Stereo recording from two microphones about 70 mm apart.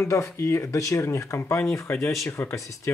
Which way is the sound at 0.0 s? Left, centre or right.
Left.